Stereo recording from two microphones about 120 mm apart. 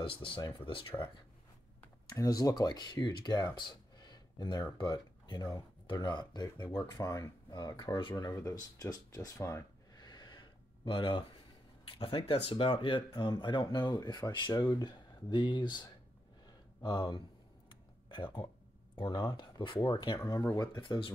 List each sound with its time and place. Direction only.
0.0 s speech: 45° left (ahead or behind)
2.1 s speech: 30° left (ahead or behind)
3.5 s a sound: 35° left (ahead or behind)
4.7 s speech: 40° left (ahead or behind)